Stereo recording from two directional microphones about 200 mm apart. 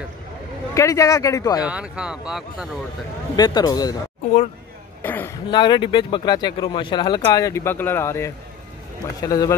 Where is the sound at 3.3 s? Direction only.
20° left (ahead or behind).